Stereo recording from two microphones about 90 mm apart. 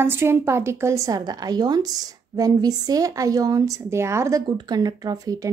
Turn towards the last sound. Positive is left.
turn(degrees=-40)  # may be behind; listen again after turning